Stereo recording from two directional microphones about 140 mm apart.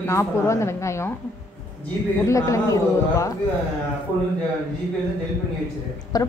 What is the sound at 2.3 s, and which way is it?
Speech, 20° left (ahead or behind).